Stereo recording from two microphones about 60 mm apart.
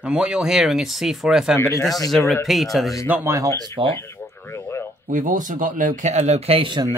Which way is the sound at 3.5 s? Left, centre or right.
Left.